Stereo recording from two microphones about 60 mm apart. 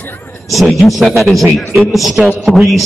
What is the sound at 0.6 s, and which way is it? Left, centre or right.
Speech, centre.